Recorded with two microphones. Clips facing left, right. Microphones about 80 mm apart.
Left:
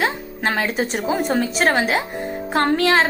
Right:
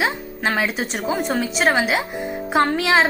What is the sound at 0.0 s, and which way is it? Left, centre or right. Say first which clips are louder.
A woman's voice: even; centre.